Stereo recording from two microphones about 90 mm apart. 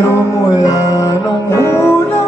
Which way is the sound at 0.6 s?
40° left (ahead or behind).